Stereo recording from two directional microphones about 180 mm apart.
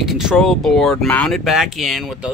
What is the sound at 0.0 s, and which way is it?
Speech, 5° right (ahead or behind).